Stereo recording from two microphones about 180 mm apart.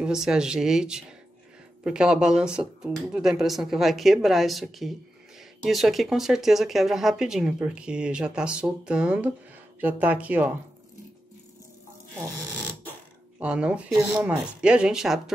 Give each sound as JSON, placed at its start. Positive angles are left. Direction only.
{"t": 0.0, "sound": "speech", "side_deg": -5}
{"t": 13.4, "sound": "speech", "side_deg": -5}